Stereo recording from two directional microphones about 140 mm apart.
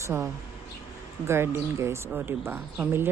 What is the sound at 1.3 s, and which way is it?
Speech, 20° right (ahead or behind).